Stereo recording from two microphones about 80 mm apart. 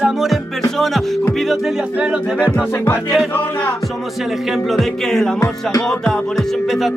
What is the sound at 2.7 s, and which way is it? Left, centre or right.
Music, left.